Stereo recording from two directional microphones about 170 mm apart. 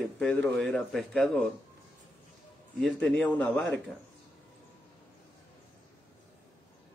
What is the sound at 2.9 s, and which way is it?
Speech, 10° left (ahead or behind).